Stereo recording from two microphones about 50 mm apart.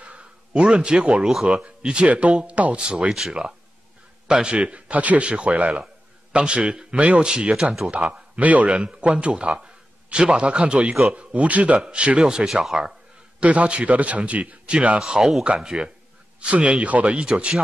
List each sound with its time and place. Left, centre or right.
0.0 s a sound: right
1.3 s speech: centre
1.6 s a man's voice: right
4.5 s a man's voice: right
6.3 s a man's voice: right
7.9 s a man's voice: right; by 12.9 s centre
13.4 s a man's voice: right
15.0 s speech: centre
15.4 s a man's voice: right